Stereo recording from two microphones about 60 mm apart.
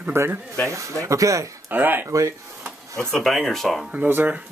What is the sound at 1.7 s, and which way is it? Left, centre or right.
Speech, right.